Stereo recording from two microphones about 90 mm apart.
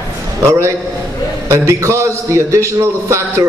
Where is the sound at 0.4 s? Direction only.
30° right (ahead or behind).